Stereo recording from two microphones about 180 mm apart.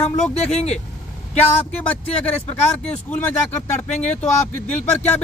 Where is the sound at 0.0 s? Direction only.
35° left (ahead or behind).